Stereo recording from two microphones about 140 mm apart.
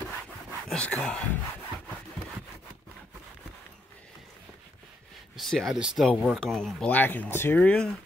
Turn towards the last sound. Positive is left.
turn(degrees=10)  # may be behind; listen again after turning